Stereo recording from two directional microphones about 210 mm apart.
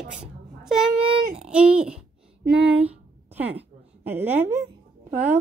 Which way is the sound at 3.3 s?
10° right (ahead or behind).